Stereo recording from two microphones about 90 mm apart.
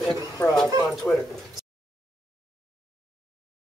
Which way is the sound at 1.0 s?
10° left (ahead or behind).